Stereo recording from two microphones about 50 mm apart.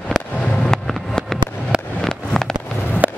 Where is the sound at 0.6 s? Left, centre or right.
Centre.